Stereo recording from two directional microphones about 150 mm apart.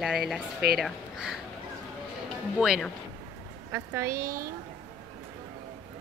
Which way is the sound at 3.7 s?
15° right (ahead or behind).